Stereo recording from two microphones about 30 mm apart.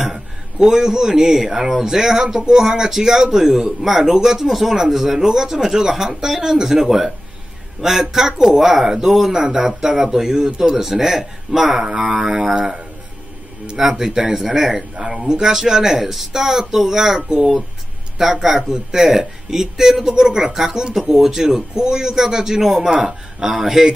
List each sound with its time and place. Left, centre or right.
0.7 s speech: centre
13.9 s speech: centre
15.1 s speech: right
15.4 s speech: centre